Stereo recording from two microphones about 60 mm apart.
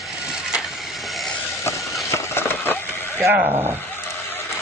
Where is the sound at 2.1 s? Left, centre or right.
Left.